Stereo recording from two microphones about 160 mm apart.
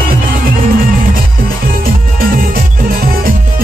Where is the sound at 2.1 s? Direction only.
65° right (ahead or behind).